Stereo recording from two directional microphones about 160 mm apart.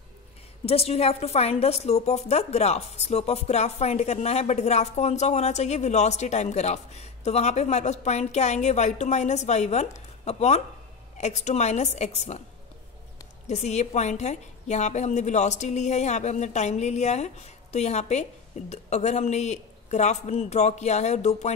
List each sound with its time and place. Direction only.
0.7 s a woman's voice: 40° left (ahead or behind)
13.5 s a woman's voice: 45° left (ahead or behind)